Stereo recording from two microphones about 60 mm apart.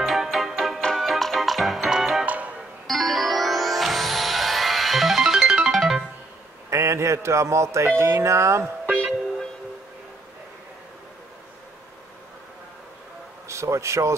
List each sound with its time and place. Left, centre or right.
0.0 s music: centre
2.2 s music: right
2.9 s music: centre
6.7 s speech: right
8.8 s music: centre
13.5 s speech: right